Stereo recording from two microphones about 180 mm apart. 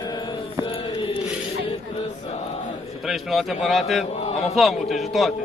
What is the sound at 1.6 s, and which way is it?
Chant, 35° left (ahead or behind).